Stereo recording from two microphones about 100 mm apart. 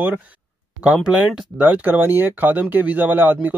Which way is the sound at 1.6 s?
15° right (ahead or behind).